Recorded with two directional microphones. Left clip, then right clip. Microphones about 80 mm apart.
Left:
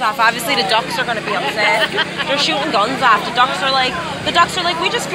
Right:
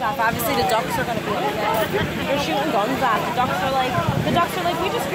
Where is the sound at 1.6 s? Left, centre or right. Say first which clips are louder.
Left 6 dB; centre.